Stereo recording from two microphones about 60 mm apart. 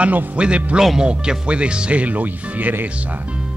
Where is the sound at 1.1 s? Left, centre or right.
Centre.